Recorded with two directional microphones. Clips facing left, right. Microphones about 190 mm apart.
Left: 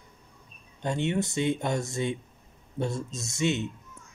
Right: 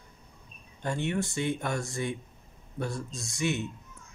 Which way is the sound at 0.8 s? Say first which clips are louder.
Left 3 dB; 20° left (ahead or behind).